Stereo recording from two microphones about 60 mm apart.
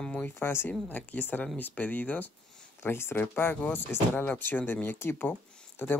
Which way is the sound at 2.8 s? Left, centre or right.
Left.